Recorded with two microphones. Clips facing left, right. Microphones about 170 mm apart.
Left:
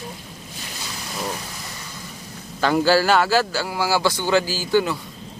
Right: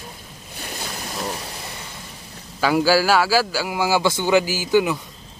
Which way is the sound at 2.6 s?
10° right (ahead or behind).